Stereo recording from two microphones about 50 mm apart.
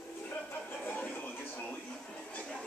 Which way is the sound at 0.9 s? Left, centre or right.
Left.